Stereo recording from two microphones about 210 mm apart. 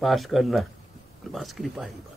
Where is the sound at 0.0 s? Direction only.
Centre (ahead or behind).